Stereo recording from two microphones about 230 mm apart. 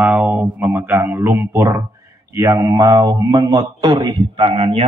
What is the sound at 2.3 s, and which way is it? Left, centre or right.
A man's voice, centre.